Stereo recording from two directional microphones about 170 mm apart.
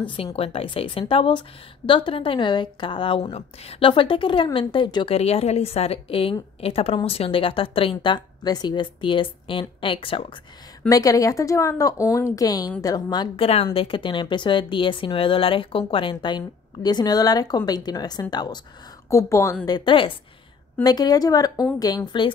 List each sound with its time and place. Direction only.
0.1 s a woman's voice: 35° left (ahead or behind)
10.9 s a woman's voice: 20° left (ahead or behind)